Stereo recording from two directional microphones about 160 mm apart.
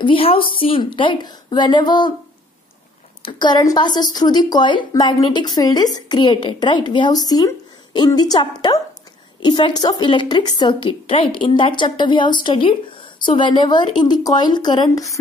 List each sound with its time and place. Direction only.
0.0 s a woman's voice: 35° left (ahead or behind)
3.2 s a woman's voice: 30° left (ahead or behind)